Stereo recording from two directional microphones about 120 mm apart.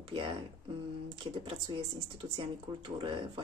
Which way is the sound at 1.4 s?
45° right (ahead or behind).